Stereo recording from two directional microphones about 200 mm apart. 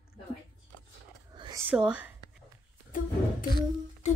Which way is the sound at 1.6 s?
5° right (ahead or behind).